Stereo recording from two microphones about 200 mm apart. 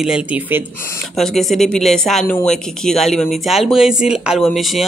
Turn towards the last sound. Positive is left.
turn(degrees=0)  # may be behind; listen again after turning